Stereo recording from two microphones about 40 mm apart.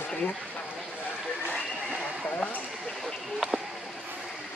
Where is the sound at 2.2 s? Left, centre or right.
Left.